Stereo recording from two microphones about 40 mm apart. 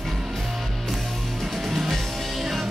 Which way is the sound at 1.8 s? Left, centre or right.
Centre.